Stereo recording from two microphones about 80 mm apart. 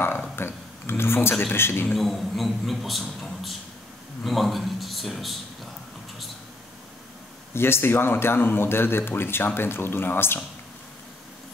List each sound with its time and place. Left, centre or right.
0.4 s a sound: left
1.4 s speech: left
1.9 s a man's voice: centre
7.5 s speech: left